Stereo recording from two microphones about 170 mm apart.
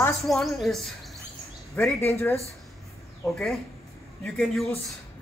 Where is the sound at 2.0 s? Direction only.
15° left (ahead or behind).